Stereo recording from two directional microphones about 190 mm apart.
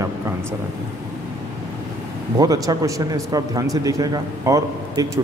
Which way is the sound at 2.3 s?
20° right (ahead or behind).